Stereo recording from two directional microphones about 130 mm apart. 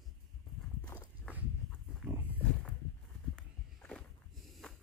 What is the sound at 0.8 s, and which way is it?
Walk, 30° left (ahead or behind).